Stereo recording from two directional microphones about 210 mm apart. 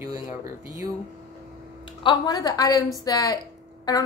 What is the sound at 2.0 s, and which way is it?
A woman's voice, 20° left (ahead or behind).